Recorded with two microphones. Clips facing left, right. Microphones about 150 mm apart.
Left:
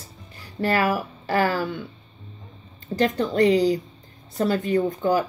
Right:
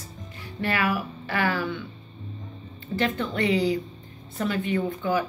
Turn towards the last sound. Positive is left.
turn(degrees=40)  # may be behind; listen again after turning